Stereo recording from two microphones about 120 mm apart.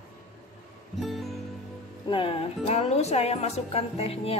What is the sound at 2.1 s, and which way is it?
Music, 50° left (ahead or behind).